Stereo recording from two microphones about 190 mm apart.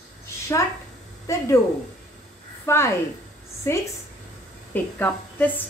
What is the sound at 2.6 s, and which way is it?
Speech, 15° left (ahead or behind).